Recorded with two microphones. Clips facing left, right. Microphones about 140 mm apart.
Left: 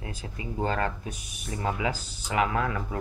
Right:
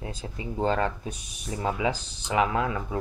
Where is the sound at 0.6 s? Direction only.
25° right (ahead or behind).